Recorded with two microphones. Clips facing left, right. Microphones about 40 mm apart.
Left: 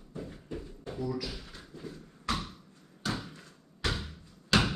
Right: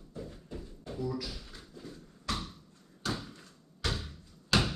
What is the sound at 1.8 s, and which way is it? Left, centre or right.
Bouncing, left.